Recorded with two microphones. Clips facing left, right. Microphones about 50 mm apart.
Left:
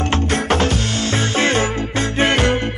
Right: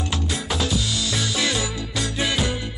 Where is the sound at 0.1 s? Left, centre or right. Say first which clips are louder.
Left 9 dB; left.